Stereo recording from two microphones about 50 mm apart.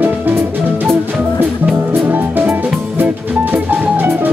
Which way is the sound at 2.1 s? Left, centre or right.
Right.